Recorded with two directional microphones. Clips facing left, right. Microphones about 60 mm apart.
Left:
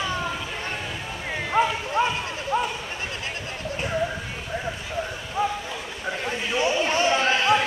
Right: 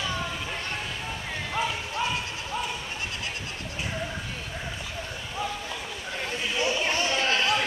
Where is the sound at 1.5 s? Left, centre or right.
Left.